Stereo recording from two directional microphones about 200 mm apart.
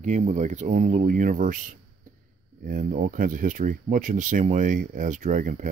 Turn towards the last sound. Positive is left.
turn(degrees=-40)  # may be behind; listen again after turning